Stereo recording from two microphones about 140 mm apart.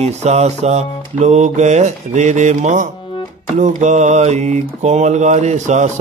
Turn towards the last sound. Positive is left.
turn(degrees=-60)  # may be behind; listen again after turning